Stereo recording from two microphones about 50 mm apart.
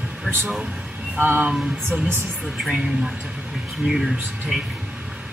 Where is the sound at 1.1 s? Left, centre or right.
Right.